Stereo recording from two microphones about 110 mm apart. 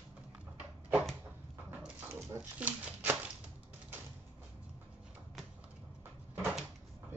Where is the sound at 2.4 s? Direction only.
15° right (ahead or behind).